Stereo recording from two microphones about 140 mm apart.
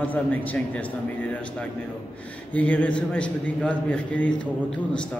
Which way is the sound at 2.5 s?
10° left (ahead or behind).